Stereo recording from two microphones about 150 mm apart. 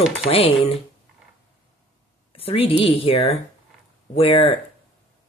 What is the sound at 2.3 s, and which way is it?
Speech, 40° left (ahead or behind).